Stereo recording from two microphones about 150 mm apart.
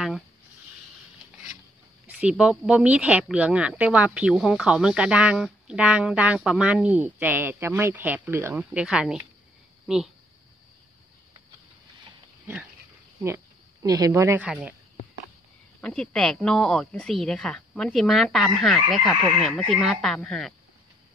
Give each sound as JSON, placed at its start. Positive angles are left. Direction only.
{"t": 2.0, "sound": "speech", "side_deg": -10}
{"t": 8.5, "sound": "a woman's voice", "side_deg": -5}
{"t": 13.8, "sound": "speech", "side_deg": -25}
{"t": 15.8, "sound": "a woman's voice", "side_deg": 5}